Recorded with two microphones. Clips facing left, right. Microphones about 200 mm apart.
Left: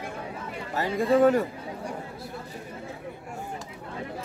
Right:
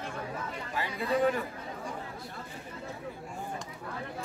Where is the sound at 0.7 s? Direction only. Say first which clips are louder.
Left 8 dB; 45° left (ahead or behind).